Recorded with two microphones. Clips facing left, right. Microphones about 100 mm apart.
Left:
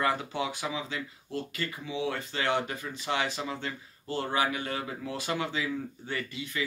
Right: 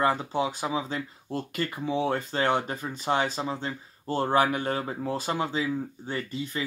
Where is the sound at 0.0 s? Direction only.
35° right (ahead or behind).